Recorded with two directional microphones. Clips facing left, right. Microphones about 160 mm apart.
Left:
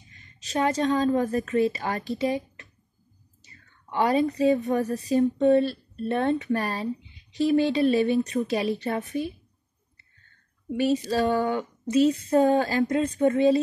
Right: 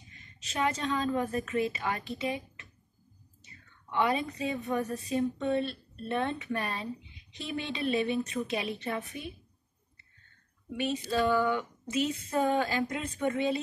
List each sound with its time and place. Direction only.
0.4 s speech: 35° left (ahead or behind)
3.9 s speech: 40° left (ahead or behind)
10.8 s speech: 35° left (ahead or behind)